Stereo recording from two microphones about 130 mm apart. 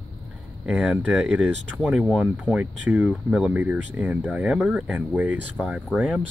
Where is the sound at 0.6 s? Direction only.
5° right (ahead or behind).